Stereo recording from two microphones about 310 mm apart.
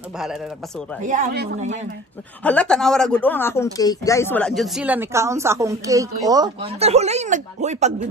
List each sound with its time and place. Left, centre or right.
1.0 s speech: right
2.4 s speech: centre; by 7.9 s right